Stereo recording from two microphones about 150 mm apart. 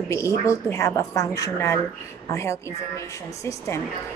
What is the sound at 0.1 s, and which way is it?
A woman's voice, 20° left (ahead or behind).